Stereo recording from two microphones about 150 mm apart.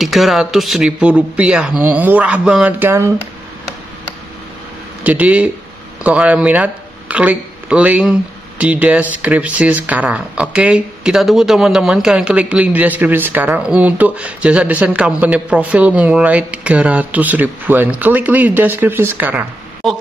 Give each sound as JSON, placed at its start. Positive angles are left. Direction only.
{"t": 0.0, "sound": "speech", "side_deg": 0}
{"t": 5.0, "sound": "speech", "side_deg": -10}
{"t": 19.8, "sound": "a woman's voice", "side_deg": 0}